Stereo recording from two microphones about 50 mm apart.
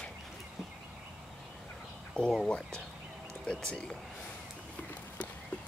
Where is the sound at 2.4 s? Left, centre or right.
Centre.